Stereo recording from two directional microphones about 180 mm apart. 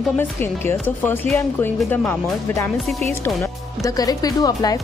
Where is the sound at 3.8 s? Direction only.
20° left (ahead or behind).